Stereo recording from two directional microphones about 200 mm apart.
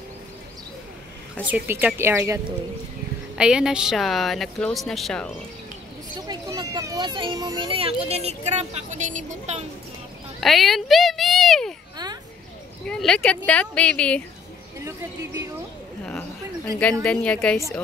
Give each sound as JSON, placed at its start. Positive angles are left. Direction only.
{"t": 1.5, "sound": "speech", "side_deg": -5}
{"t": 6.1, "sound": "speech", "side_deg": -20}
{"t": 10.4, "sound": "a child's voice", "side_deg": 0}
{"t": 12.8, "sound": "speech", "side_deg": 5}
{"t": 14.9, "sound": "speech", "side_deg": -15}
{"t": 17.0, "sound": "speech", "side_deg": 5}